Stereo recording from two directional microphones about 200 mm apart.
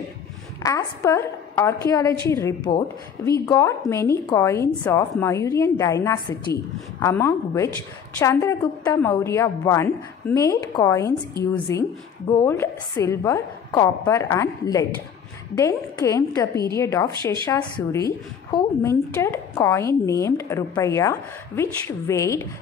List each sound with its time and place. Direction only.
0.6 s a woman's voice: 15° left (ahead or behind)